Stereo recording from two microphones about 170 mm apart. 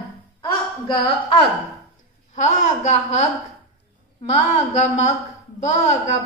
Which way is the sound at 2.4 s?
45° left (ahead or behind).